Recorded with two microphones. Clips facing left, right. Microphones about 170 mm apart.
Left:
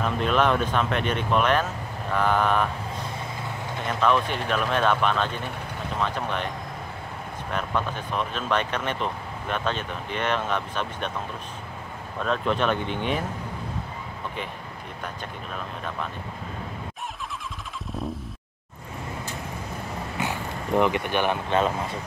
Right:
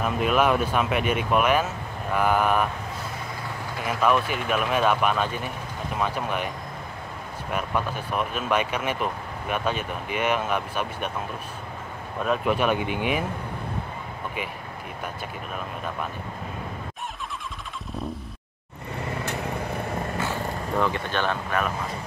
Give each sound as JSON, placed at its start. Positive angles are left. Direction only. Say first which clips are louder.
{"t": 0.0, "sound": "speech", "louder": "right 1 dB", "side_deg": -10}
{"t": 3.8, "sound": "speech", "louder": "even", "side_deg": -5}
{"t": 7.5, "sound": "speech", "louder": "right 1 dB", "side_deg": -10}
{"t": 12.2, "sound": "speech", "louder": "right 1 dB", "side_deg": -10}
{"t": 20.2, "sound": "speech", "louder": "right 1 dB", "side_deg": 20}